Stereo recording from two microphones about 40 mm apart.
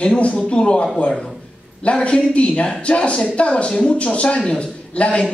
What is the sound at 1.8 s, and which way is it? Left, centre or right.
Speech, left.